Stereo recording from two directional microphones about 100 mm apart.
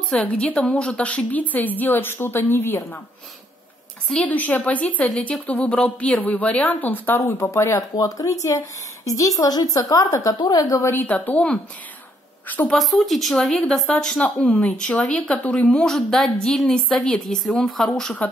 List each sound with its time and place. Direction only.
0.1 s speech: 10° left (ahead or behind)
4.1 s speech: 15° left (ahead or behind)
7.9 s speech: 40° left (ahead or behind)
10.8 s a woman's voice: 20° left (ahead or behind)
12.7 s speech: centre (ahead or behind)